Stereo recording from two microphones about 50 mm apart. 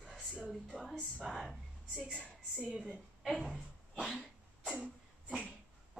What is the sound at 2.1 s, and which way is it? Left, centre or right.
Speech, centre.